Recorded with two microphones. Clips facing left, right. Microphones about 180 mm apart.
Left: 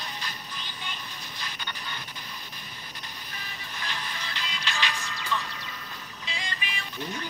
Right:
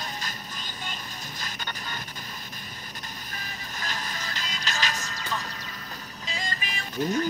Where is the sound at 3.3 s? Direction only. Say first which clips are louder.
Right 2 dB; 45° right (ahead or behind).